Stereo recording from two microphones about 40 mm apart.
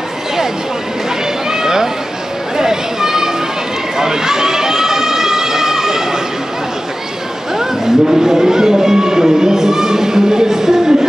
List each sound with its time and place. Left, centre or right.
1.5 s a sound: centre
2.5 s chatter: centre
4.0 s run: centre
7.5 s vehicle: centre